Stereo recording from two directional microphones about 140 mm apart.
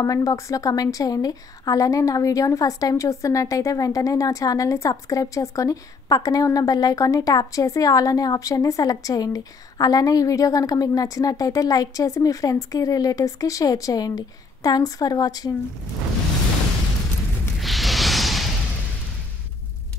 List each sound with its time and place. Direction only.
0.0 s a woman's voice: 25° left (ahead or behind)
17.6 s music: centre (ahead or behind)